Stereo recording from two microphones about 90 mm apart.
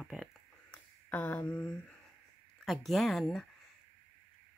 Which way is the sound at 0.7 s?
20° left (ahead or behind).